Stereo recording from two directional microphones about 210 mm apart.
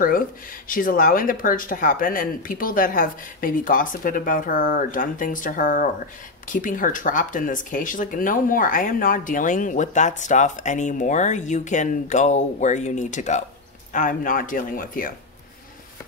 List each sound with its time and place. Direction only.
0.7 s speech: 40° left (ahead or behind)